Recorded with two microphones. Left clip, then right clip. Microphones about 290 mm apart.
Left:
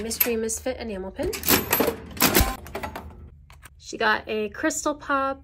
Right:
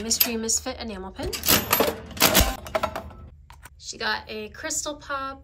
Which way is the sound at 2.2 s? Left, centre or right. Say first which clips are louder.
Right 2 dB; centre.